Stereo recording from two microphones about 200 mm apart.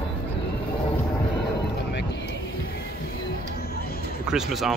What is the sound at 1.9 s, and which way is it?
Vehicle, 60° left (ahead or behind).